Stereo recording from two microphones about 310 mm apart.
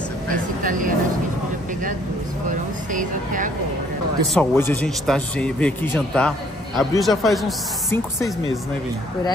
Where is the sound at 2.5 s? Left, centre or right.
Right.